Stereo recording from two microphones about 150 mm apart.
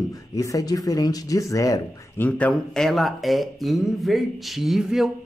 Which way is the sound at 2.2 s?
10° left (ahead or behind).